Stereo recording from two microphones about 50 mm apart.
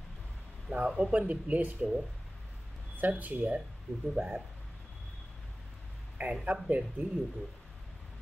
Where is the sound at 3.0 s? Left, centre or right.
Right.